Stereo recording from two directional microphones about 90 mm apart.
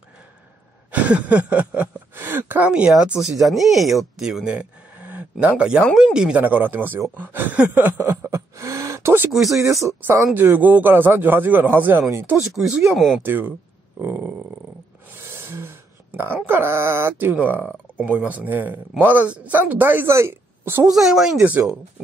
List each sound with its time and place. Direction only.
1.0 s a sound: 15° right (ahead or behind)
2.9 s speech: 5° right (ahead or behind)
5.9 s a sound: 10° right (ahead or behind)
6.4 s speech: 20° right (ahead or behind)
7.2 s a sound: 20° right (ahead or behind)
9.3 s speech: centre (ahead or behind)
10.3 s speech: 20° right (ahead or behind)
12.7 s speech: 5° right (ahead or behind)
13.2 s speech: 20° right (ahead or behind)
14.0 s a sound: 20° right (ahead or behind)
16.4 s speech: 25° right (ahead or behind)
20.9 s speech: centre (ahead or behind)